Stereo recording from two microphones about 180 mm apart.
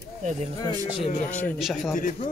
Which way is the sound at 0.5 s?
25° left (ahead or behind).